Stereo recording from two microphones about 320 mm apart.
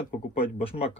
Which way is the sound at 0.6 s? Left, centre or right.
Centre.